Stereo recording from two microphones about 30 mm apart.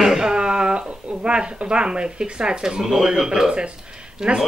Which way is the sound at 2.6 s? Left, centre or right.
Centre.